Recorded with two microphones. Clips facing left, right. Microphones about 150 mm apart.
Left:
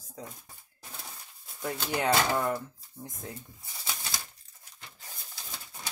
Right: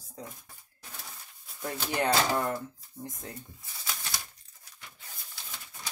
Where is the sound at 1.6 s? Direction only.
5° left (ahead or behind).